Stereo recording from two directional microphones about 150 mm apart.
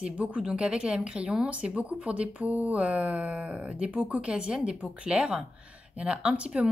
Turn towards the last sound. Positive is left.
turn(degrees=-5)  # may be behind; listen again after turning